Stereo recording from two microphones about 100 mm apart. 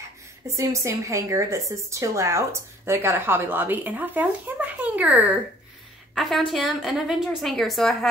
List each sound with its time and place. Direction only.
0.6 s a woman's voice: 30° right (ahead or behind); by 5.3 s 15° right (ahead or behind)
6.1 s a woman's voice: centre (ahead or behind)